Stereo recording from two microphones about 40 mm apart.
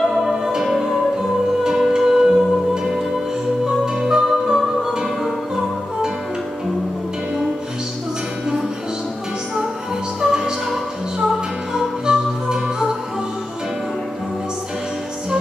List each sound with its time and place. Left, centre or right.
0.1 s music: centre
4.0 s music: centre
10.2 s music: centre